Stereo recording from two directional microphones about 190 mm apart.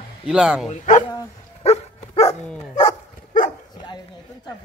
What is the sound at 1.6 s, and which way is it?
Dog, 35° left (ahead or behind).